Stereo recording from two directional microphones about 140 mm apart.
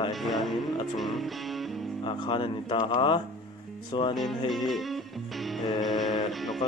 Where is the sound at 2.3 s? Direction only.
35° left (ahead or behind).